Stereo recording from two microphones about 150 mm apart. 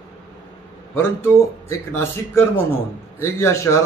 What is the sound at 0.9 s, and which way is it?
A man's voice, 15° left (ahead or behind).